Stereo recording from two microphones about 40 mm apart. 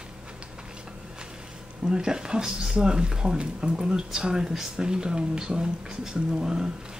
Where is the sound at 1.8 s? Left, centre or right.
Centre.